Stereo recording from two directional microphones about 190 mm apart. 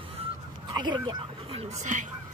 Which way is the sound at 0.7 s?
25° right (ahead or behind).